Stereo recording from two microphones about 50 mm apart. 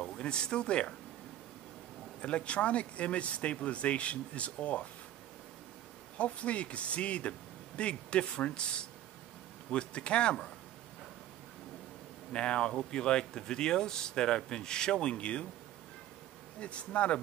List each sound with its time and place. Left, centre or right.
0.2 s speech: centre
2.2 s speech: left
6.1 s speech: left
12.3 s speech: left
16.5 s speech: left